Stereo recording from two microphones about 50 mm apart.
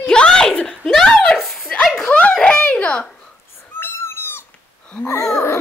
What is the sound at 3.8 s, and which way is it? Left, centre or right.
Cat, left.